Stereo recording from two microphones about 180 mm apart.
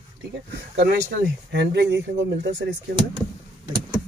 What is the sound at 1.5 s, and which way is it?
Speech, 70° right (ahead or behind).